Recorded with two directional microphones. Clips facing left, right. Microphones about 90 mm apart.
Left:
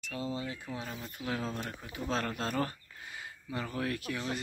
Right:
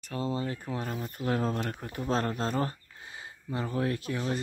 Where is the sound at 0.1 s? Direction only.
40° right (ahead or behind).